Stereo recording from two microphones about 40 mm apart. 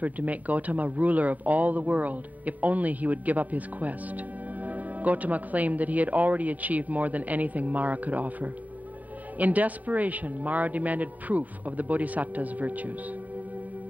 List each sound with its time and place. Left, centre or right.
0.0 s speech: right